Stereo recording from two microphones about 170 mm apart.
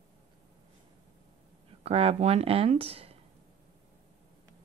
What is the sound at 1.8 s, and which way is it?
Speech, 35° right (ahead or behind).